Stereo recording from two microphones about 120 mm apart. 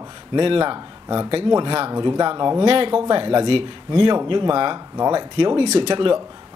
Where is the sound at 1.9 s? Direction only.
35° right (ahead or behind).